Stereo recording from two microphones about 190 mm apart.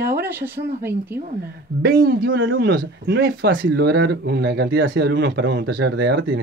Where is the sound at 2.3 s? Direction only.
90° right.